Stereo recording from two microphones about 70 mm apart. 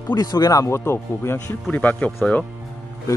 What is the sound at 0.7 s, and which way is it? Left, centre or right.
Speech, left.